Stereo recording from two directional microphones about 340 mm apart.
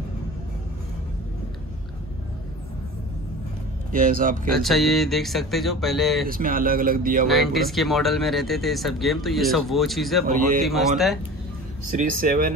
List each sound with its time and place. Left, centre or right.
3.9 s speech: right
4.6 s speech: centre
6.2 s speech: right
7.2 s speech: centre
11.9 s speech: right